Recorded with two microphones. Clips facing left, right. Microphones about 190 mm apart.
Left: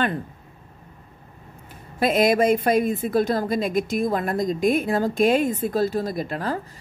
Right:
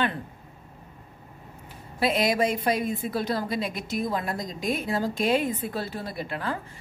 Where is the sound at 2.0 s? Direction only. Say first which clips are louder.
Left 5 dB; 50° left (ahead or behind).